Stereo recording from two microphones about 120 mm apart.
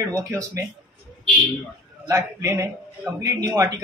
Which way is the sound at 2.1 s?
25° right (ahead or behind).